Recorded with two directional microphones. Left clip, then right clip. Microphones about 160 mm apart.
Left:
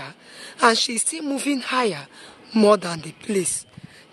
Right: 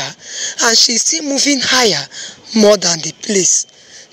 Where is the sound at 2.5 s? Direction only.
20° right (ahead or behind).